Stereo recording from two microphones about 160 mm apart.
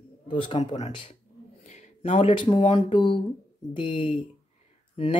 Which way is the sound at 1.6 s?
50° left (ahead or behind).